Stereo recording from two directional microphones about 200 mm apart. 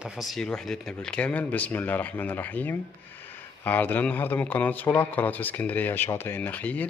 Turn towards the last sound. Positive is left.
turn(degrees=10)  # may be behind; listen again after turning